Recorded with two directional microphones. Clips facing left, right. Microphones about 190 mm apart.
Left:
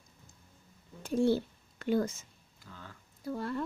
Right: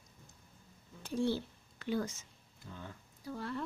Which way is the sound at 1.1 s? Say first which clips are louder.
Left 6 dB; 50° left (ahead or behind).